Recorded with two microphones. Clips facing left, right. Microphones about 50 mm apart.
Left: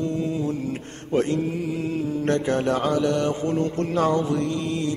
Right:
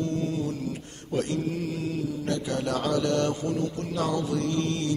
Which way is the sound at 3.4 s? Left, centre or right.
Left.